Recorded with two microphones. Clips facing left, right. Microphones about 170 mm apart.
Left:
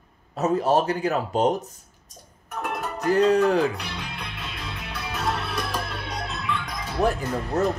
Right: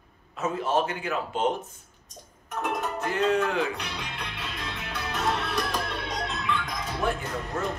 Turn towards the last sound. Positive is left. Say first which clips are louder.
# left 6 dB
turn(degrees=40)  # may be behind; listen again after turning